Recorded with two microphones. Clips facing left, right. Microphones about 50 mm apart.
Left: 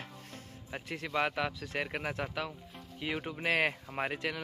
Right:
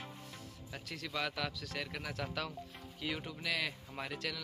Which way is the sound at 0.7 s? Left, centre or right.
Left.